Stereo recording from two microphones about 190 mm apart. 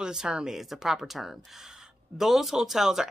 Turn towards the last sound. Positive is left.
turn(degrees=0)  # may be behind; listen again after turning